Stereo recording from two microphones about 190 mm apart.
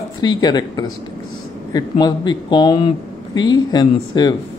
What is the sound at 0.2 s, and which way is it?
Speech, 20° left (ahead or behind).